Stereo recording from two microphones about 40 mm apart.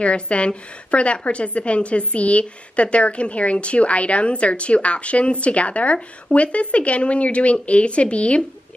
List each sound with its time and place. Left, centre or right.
0.0 s a woman's voice: left